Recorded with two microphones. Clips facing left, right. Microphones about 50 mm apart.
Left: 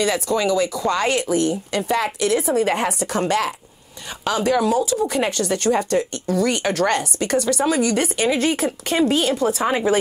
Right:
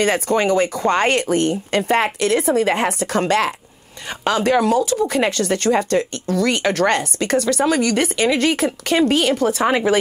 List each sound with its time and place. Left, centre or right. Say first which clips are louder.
0.0 s speech: right 3 dB; right